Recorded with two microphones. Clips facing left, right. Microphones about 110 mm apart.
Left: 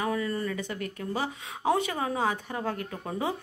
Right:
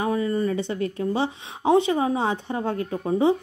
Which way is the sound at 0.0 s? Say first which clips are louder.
Right 6 dB; 25° right (ahead or behind).